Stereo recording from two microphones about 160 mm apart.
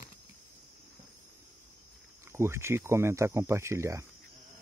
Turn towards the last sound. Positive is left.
turn(degrees=-20)  # may be behind; listen again after turning